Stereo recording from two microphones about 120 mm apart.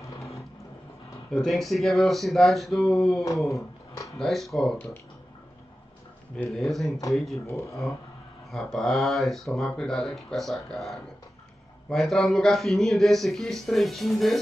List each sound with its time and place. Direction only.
1.3 s speech: centre (ahead or behind)
3.4 s speech: 25° left (ahead or behind)
4.2 s speech: centre (ahead or behind)
6.3 s speech: 5° left (ahead or behind)
7.4 s speech: 25° left (ahead or behind)
8.5 s speech: centre (ahead or behind)